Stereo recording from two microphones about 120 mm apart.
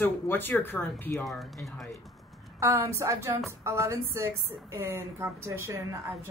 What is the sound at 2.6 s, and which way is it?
A woman's voice, 20° right (ahead or behind).